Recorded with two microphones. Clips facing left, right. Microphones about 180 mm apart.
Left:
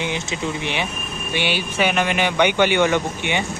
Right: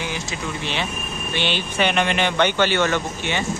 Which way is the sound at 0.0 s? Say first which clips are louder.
Left 3 dB; 20° left (ahead or behind).